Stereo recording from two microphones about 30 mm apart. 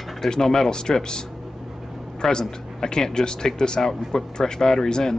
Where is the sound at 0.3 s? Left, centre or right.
Centre.